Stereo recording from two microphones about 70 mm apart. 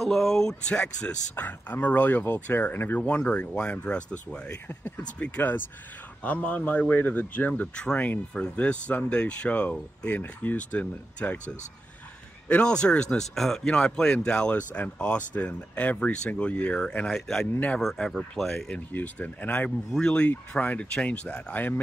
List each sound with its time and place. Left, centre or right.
0.0 s speech: centre
1.3 s speech: left
7.6 s speech: centre
12.4 s speech: centre
18.9 s speech: left
19.9 s speech: centre